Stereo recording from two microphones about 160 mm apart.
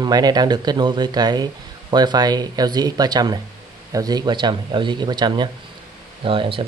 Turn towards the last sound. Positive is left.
turn(degrees=-35)  # may be behind; listen again after turning